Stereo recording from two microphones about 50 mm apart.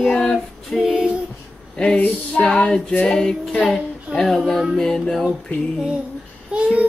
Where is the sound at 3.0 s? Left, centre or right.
Centre.